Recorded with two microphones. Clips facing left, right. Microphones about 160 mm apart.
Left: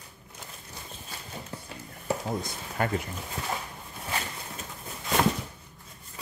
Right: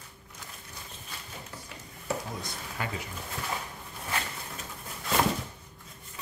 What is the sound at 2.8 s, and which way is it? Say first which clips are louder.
Speech: left 7 dB; 50° left (ahead or behind).